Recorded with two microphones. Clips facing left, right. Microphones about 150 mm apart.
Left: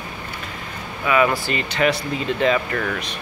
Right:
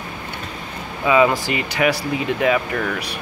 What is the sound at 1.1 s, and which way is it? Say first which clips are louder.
Speech: right 3 dB; 15° right (ahead or behind).